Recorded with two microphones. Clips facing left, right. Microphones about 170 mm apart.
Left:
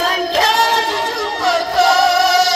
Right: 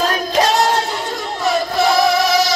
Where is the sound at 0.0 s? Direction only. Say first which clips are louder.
Even; 90° left.